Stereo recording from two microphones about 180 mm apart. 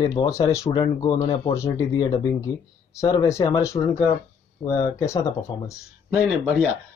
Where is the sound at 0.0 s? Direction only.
20° left (ahead or behind).